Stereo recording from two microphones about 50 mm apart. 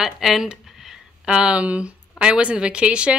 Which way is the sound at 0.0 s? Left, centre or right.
Centre.